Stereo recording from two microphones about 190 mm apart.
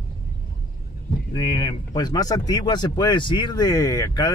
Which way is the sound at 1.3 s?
25° left (ahead or behind).